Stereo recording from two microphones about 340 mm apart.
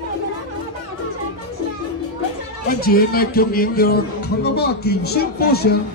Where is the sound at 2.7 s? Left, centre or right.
Left.